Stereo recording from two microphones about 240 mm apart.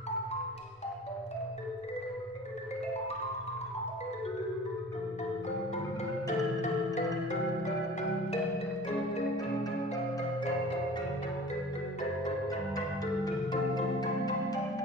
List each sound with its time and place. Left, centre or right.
6.2 s marimba: left
12.4 s music: centre